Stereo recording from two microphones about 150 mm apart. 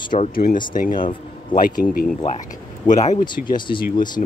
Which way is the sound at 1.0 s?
35° left (ahead or behind).